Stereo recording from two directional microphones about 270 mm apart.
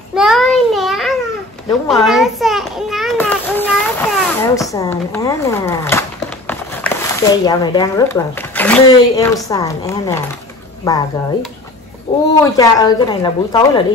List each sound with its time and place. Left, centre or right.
0.1 s child singing: centre
1.7 s a sound: centre
4.6 s speech: centre
12.1 s speech: centre